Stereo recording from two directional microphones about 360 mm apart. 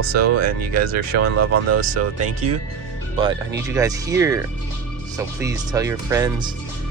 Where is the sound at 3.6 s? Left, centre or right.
Centre.